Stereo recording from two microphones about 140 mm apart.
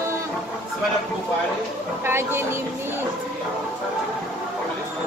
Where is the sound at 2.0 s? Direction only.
15° right (ahead or behind).